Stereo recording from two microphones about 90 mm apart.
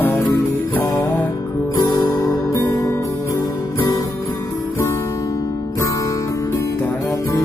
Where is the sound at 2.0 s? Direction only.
35° left (ahead or behind).